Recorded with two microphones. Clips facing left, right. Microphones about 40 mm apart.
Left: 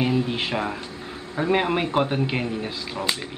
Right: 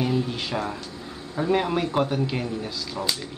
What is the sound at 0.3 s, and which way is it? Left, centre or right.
Speech, left.